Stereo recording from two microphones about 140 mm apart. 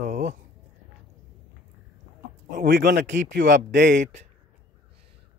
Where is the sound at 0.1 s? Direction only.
60° right (ahead or behind).